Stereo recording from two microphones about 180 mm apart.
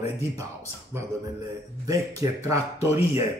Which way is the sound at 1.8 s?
20° right (ahead or behind).